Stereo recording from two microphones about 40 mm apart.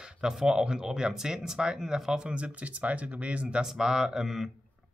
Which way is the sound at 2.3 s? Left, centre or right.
Right.